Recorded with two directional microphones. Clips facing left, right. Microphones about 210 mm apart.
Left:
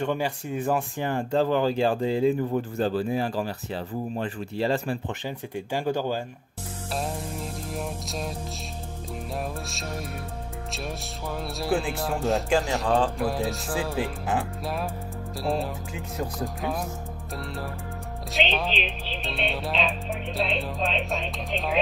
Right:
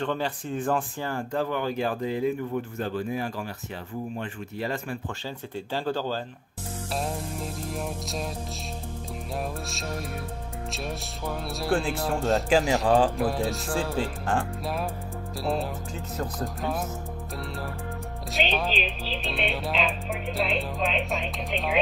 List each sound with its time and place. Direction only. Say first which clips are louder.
0.0 s speech: left 2 dB; 10° left (ahead or behind); by 4.9 s 30° left (ahead or behind)
5.7 s speech: left 2 dB; 15° left (ahead or behind)
7.0 s music: even; centre (ahead or behind)
11.2 s speech: even; centre (ahead or behind)
18.3 s speech: even; centre (ahead or behind)